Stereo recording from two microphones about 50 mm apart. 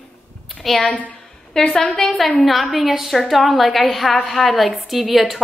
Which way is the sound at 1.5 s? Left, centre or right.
Centre.